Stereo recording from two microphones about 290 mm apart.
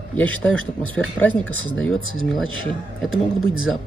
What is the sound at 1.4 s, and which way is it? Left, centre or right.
Speech, left.